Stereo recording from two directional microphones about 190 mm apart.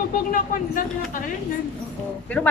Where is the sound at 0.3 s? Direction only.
45° left (ahead or behind).